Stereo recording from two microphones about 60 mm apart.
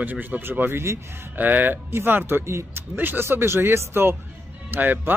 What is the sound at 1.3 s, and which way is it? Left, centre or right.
Speech, right.